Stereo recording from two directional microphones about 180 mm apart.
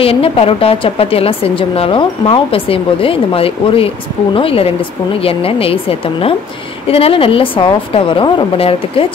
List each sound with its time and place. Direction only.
0.0 s a woman's voice: 30° left (ahead or behind)